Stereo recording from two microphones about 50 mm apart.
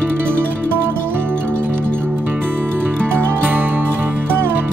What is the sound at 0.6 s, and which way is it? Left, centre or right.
Music, right.